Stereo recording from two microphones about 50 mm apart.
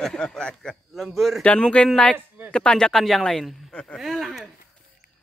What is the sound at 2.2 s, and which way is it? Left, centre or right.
Speech, right.